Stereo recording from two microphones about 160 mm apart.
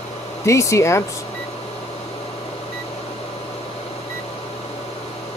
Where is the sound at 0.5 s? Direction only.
20° left (ahead or behind).